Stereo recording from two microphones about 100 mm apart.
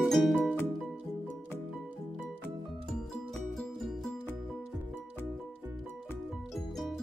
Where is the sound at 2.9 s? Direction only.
5° left (ahead or behind).